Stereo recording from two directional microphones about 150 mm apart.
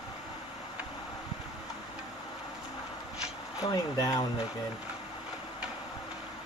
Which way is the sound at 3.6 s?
25° left (ahead or behind).